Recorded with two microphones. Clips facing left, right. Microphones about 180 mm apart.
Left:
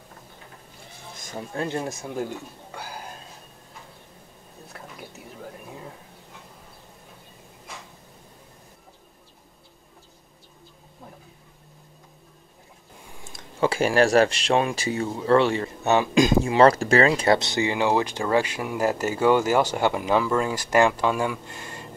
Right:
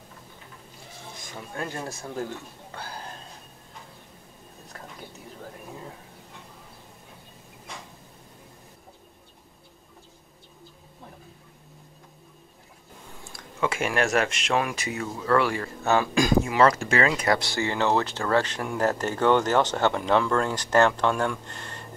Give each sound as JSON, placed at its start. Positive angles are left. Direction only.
{"t": 1.2, "sound": "speech", "side_deg": 40}
{"t": 1.6, "sound": "speech", "side_deg": 20}
{"t": 13.2, "sound": "a sound", "side_deg": 20}
{"t": 13.7, "sound": "speech", "side_deg": 35}